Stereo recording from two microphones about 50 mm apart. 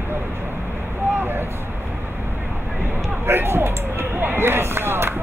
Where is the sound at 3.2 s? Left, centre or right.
Right.